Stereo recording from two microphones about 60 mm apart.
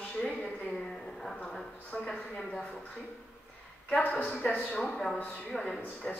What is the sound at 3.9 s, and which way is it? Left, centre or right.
A man's voice, left.